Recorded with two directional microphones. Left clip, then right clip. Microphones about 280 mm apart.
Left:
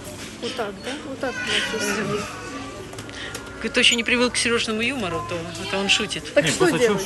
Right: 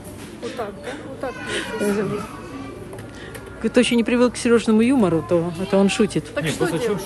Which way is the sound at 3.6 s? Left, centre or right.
Centre.